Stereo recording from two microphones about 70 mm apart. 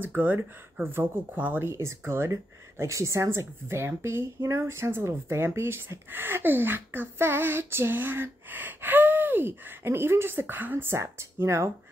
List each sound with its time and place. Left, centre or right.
0.0 s speech: right
1.7 s a woman's voice: right
11.0 s speech: right